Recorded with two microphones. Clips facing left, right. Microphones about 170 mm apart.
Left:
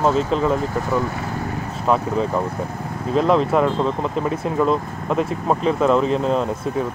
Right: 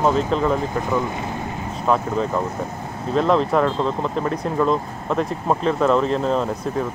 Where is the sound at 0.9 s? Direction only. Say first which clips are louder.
Left 1 dB; 20° right (ahead or behind).